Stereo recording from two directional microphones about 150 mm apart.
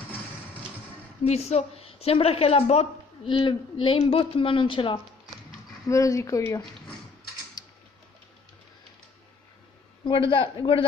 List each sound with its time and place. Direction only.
1.2 s a woman's voice: 45° left (ahead or behind)
5.9 s speech: 20° left (ahead or behind)
10.0 s a woman's voice: 35° left (ahead or behind)